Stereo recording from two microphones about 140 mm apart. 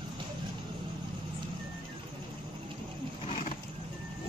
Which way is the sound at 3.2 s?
50° left (ahead or behind).